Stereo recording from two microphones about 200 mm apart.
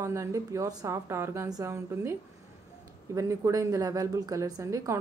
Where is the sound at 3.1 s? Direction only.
15° right (ahead or behind).